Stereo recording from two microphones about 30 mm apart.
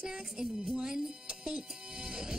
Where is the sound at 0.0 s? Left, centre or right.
Right.